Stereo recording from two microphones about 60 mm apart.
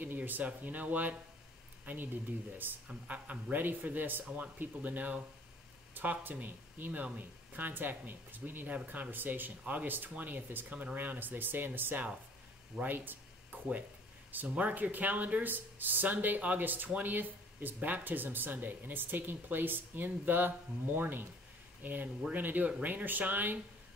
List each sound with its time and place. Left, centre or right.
0.0 s speech: right
2.6 s speech: right
12.8 s a sound: right
14.3 s speech: right